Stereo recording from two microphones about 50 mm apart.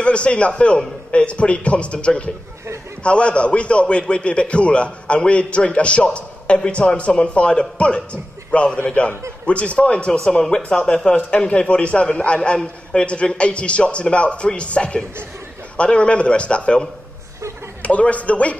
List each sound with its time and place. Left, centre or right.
0.0 s a man's voice: left
10.1 s a man's voice: centre
17.8 s a man's voice: left